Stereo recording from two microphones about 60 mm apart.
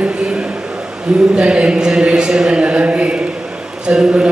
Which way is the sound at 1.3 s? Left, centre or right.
Centre.